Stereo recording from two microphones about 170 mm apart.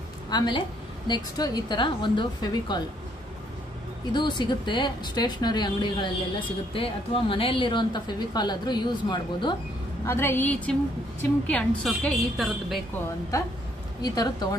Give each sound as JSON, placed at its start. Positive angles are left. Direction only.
{"t": 0.3, "sound": "speech", "side_deg": 25}
{"t": 4.1, "sound": "speech", "side_deg": 25}
{"t": 10.0, "sound": "a woman's voice", "side_deg": 15}
{"t": 14.0, "sound": "speech", "side_deg": 25}